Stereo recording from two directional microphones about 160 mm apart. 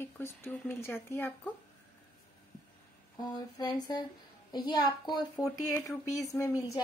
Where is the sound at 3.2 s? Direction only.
25° left (ahead or behind).